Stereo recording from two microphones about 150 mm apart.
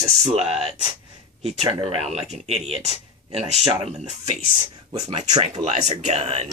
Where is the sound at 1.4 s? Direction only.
45° right (ahead or behind).